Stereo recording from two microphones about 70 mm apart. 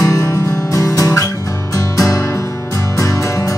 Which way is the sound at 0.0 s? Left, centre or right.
Left.